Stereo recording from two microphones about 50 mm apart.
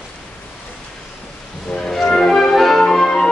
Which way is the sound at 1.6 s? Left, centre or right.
Centre.